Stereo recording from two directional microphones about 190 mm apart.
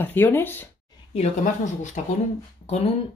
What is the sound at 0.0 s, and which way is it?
Speech, 10° left (ahead or behind).